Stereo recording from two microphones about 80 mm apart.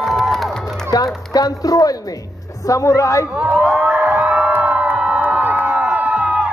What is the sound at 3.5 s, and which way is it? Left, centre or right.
Crowd, centre.